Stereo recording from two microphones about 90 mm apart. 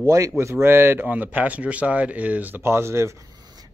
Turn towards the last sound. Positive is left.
turn(degrees=-30)  # may be behind; listen again after turning